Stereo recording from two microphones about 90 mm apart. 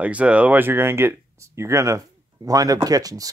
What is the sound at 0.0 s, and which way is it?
Speech, 15° right (ahead or behind).